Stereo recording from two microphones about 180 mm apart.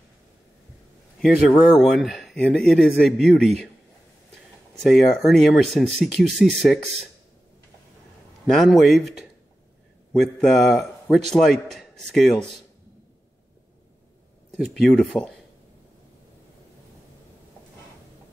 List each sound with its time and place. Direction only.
1.6 s speech: centre (ahead or behind)
4.8 s speech: centre (ahead or behind)
8.5 s speech: centre (ahead or behind)
10.1 s speech: centre (ahead or behind)
14.5 s speech: centre (ahead or behind)